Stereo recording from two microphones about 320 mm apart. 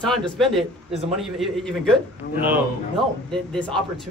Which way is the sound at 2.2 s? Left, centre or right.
Left.